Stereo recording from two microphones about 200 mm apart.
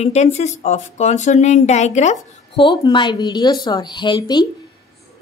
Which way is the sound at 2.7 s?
20° left (ahead or behind).